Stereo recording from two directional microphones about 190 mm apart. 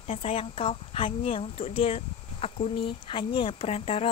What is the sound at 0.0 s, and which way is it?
Speech, 30° left (ahead or behind).